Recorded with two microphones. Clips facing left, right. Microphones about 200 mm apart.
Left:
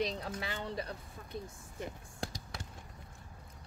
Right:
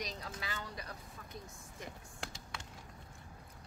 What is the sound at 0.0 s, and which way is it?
Speech, 30° left (ahead or behind).